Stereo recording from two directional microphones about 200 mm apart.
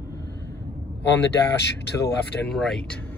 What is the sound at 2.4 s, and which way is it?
Speech, centre (ahead or behind).